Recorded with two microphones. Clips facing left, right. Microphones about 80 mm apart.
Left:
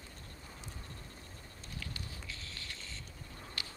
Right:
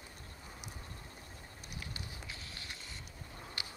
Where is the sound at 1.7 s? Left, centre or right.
Right.